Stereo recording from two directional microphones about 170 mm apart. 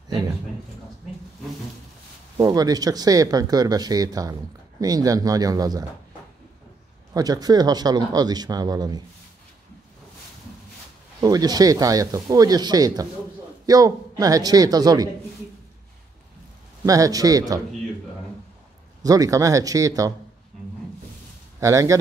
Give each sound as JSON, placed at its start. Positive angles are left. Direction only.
{"t": 2.3, "sound": "speech", "side_deg": -20}
{"t": 7.2, "sound": "speech", "side_deg": -20}
{"t": 11.1, "sound": "speech", "side_deg": -20}
{"t": 16.8, "sound": "speech", "side_deg": -20}
{"t": 19.0, "sound": "speech", "side_deg": -20}
{"t": 21.5, "sound": "speech", "side_deg": -20}